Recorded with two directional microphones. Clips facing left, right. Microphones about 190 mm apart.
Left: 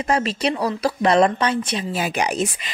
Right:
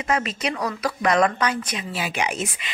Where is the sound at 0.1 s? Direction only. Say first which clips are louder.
Left 4 dB; 30° left (ahead or behind).